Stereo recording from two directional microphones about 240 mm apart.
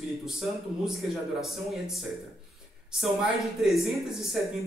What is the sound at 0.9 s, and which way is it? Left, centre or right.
Speech, centre.